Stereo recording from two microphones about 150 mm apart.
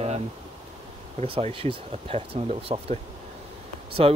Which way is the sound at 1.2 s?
35° right (ahead or behind).